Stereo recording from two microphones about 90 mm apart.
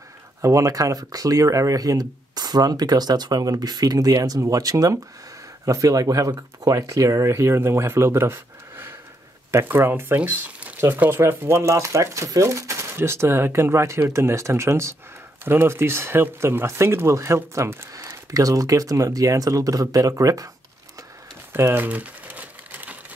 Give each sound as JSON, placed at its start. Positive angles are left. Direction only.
{"t": 0.4, "sound": "speech", "side_deg": -40}
{"t": 21.5, "sound": "crumpling", "side_deg": -25}